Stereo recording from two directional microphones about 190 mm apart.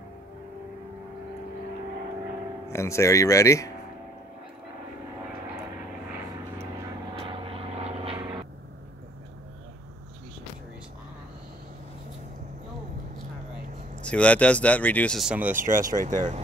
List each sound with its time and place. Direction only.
2.7 s speech: 15° left (ahead or behind)
7.2 s vehicle: 30° right (ahead or behind)
14.0 s speech: 5° left (ahead or behind)
15.5 s speech: 45° right (ahead or behind)